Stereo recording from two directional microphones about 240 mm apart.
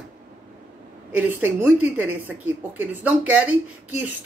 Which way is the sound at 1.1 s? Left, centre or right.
Centre.